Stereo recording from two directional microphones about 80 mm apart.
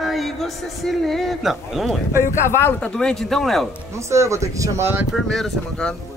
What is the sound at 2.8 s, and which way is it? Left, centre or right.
Speech, centre.